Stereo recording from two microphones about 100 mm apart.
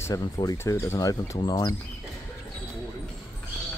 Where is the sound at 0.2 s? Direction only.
45° left (ahead or behind).